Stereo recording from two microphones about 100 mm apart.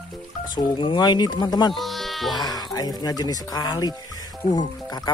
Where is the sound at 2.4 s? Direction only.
40° left (ahead or behind).